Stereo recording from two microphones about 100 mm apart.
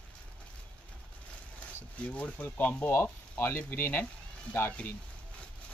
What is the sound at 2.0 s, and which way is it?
Speech, 15° left (ahead or behind).